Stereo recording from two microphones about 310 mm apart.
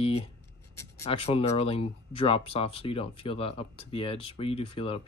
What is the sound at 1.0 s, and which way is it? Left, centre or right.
Speech, centre.